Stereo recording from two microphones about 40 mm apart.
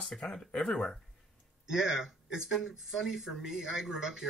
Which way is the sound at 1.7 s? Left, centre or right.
Centre.